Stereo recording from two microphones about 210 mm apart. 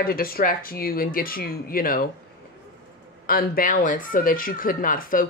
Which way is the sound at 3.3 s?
45° left (ahead or behind).